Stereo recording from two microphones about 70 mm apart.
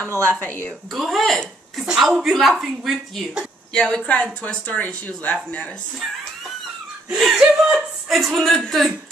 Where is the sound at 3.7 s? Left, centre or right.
Centre.